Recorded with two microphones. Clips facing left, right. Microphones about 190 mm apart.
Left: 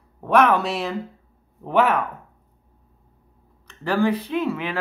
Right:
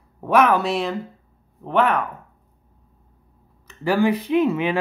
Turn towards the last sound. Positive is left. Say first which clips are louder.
# right 6 dB
turn(degrees=-20)  # may be behind; listen again after turning